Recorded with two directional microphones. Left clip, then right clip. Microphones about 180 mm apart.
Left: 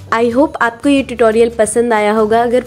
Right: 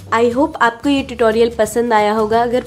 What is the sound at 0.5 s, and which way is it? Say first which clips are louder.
A woman's voice: left 2 dB; 20° left (ahead or behind).